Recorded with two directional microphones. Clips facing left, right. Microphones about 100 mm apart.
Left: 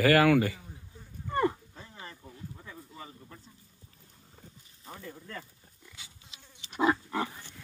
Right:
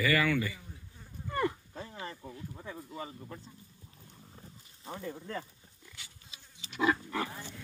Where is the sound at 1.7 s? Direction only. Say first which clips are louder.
Right 5 dB; 25° right (ahead or behind).